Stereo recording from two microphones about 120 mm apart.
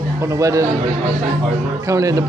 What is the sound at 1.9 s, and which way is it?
Speech, 25° right (ahead or behind).